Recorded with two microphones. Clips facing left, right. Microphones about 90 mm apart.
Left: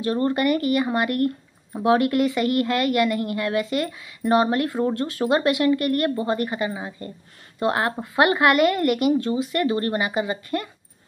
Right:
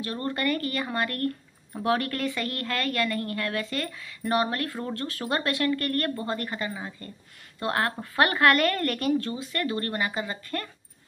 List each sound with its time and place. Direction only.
0.0 s a woman's voice: 25° left (ahead or behind)